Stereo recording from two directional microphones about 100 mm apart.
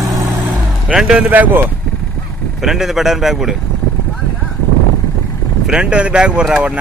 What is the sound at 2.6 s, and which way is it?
Speech, 5° right (ahead or behind).